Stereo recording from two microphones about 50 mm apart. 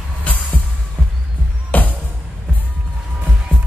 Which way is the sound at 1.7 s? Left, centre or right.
Left.